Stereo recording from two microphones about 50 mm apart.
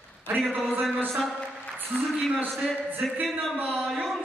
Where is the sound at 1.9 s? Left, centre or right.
Left.